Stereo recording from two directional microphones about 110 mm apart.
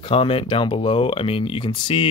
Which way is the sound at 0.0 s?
55° left (ahead or behind).